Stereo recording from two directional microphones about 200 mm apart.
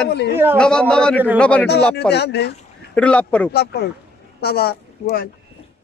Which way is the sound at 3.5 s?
55° left (ahead or behind).